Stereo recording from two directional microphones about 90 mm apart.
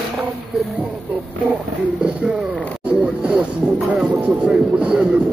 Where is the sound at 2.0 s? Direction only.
15° right (ahead or behind).